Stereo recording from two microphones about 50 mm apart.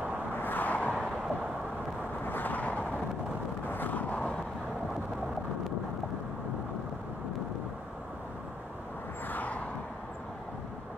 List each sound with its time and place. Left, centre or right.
0.4 s vehicle: left
2.2 s vehicle: left
9.3 s vehicle: left